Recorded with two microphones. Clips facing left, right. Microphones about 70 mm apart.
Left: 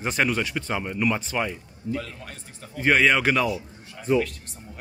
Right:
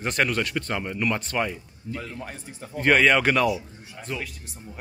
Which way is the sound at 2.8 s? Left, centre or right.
Centre.